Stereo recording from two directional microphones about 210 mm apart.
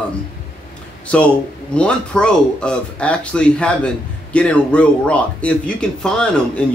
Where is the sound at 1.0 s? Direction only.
5° left (ahead or behind).